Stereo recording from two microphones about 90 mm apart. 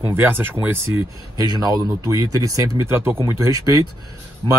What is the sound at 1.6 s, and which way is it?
Speech, 45° right (ahead or behind).